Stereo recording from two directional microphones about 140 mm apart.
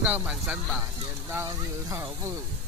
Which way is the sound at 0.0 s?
10° right (ahead or behind).